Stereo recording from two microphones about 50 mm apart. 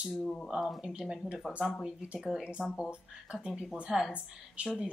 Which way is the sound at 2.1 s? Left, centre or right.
Centre.